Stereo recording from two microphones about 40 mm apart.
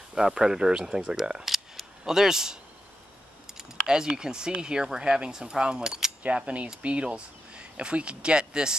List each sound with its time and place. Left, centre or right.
0.1 s speech: centre
1.4 s camera: centre
2.1 s speech: centre
6.2 s speech: right